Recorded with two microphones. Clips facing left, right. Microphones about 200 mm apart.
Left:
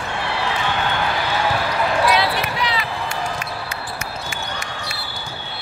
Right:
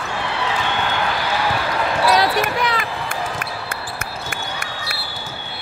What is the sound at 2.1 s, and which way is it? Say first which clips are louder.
Basketball bounce: right 3 dB; 45° right (ahead or behind).